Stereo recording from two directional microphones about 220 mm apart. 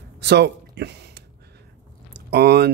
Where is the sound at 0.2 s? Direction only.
50° right (ahead or behind).